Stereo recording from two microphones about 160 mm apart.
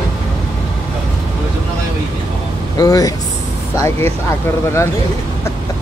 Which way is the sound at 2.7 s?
25° left (ahead or behind).